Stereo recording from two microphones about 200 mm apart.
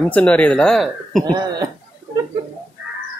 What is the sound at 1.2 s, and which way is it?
Speech, 20° right (ahead or behind).